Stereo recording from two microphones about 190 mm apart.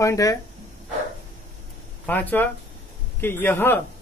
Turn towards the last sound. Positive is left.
turn(degrees=10)  # may be behind; listen again after turning